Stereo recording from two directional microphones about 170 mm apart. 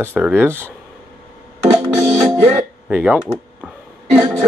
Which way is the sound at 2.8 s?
10° right (ahead or behind).